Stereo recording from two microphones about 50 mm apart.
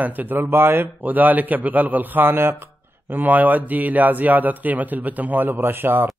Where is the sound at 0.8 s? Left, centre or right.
Right.